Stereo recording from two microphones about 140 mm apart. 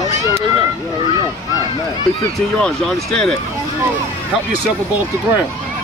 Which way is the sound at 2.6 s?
5° left (ahead or behind).